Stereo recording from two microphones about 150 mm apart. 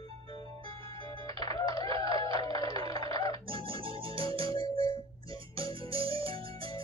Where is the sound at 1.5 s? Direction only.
35° right (ahead or behind).